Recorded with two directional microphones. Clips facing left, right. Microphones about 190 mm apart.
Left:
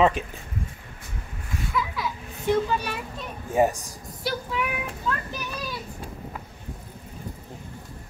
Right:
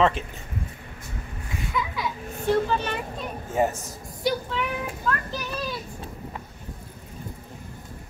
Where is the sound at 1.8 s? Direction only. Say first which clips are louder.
Even; centre (ahead or behind).